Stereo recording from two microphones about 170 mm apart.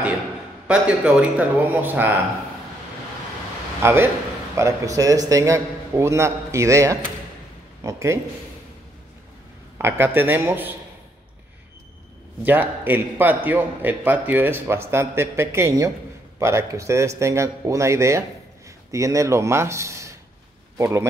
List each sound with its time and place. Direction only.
0.7 s a man's voice: 5° right (ahead or behind)
3.8 s a man's voice: 15° right (ahead or behind)
9.8 s a man's voice: 15° right (ahead or behind)
12.4 s a man's voice: 10° right (ahead or behind)